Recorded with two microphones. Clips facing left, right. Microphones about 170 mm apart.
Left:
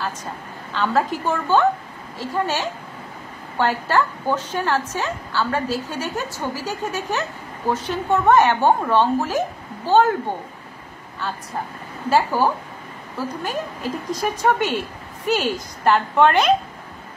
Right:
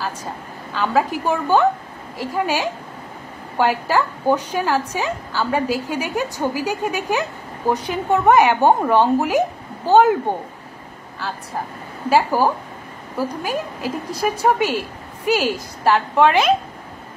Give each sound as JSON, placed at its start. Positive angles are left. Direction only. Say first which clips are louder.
{"t": 0.7, "sound": "a woman's voice", "louder": "right 1 dB", "side_deg": -10}
{"t": 12.1, "sound": "a woman's voice", "louder": "right 2 dB", "side_deg": -10}